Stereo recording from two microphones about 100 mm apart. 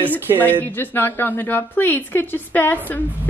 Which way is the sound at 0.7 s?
20° left (ahead or behind).